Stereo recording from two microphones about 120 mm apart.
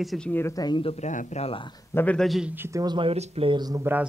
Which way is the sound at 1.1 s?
90° left.